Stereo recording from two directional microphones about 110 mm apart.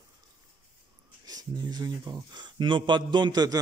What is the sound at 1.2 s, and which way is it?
Speech, 35° right (ahead or behind).